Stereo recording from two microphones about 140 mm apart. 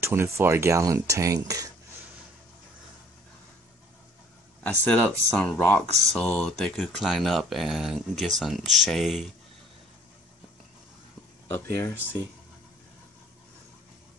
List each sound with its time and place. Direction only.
0.0 s speech: 15° right (ahead or behind)
4.6 s speech: 10° left (ahead or behind)